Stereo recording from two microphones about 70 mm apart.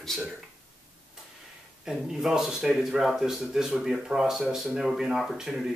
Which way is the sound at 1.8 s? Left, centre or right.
Centre.